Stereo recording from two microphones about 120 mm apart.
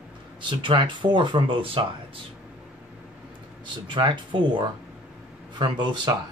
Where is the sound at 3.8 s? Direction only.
40° right (ahead or behind).